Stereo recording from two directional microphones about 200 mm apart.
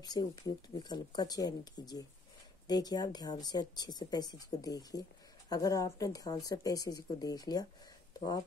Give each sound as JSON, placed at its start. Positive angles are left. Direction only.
{"t": 0.0, "sound": "speech", "side_deg": 20}